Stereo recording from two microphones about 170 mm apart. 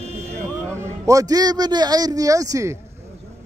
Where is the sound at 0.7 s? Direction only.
15° right (ahead or behind).